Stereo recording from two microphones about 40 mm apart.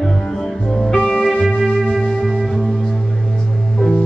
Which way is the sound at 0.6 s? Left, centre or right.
Centre.